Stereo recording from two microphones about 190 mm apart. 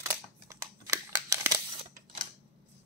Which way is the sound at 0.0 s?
15° right (ahead or behind).